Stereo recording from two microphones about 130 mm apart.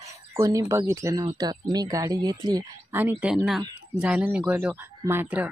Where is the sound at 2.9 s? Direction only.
15° right (ahead or behind).